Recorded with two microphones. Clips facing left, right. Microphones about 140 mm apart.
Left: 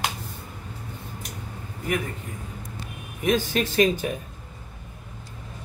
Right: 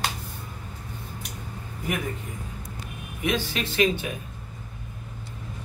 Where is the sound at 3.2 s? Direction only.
45° left (ahead or behind).